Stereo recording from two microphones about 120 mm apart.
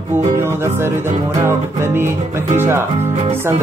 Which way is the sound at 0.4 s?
20° right (ahead or behind).